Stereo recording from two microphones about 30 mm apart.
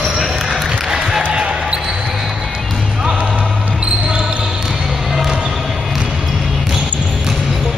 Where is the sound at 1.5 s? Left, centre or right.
Right.